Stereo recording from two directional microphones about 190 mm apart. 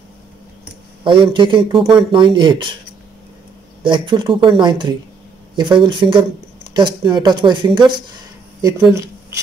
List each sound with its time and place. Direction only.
1.0 s speech: 25° right (ahead or behind)
3.8 s speech: 25° right (ahead or behind)
8.9 s a sound: 15° right (ahead or behind)